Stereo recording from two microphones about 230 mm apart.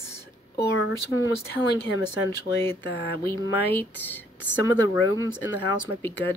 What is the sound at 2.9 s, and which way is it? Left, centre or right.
Speech, left.